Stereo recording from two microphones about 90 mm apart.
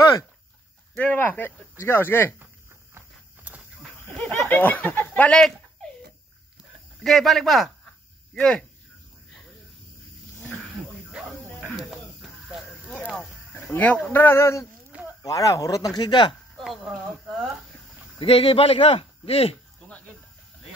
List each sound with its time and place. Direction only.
0.9 s speech: 20° left (ahead or behind)
3.3 s a sound: 15° right (ahead or behind)
4.5 s speech: 20° left (ahead or behind)
7.0 s speech: centre (ahead or behind)
11.7 s a sound: centre (ahead or behind)
13.7 s speech: 15° left (ahead or behind)
14.1 s speech: 25° left (ahead or behind); by 16.3 s 60° left (ahead or behind)
16.5 s a woman's voice: centre (ahead or behind)
17.9 s a sound: 15° right (ahead or behind)
18.2 s a man's voice: 90° left